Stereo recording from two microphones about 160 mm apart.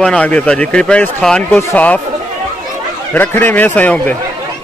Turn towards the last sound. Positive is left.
turn(degrees=10)  # may be behind; listen again after turning